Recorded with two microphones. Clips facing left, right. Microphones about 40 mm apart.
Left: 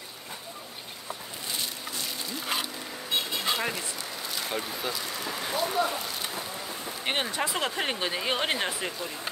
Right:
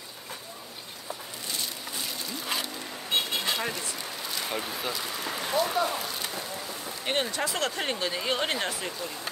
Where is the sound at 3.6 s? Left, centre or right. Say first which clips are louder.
Left 1 dB; centre.